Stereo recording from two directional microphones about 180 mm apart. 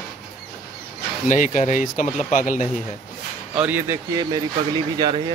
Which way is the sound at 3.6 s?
10° right (ahead or behind).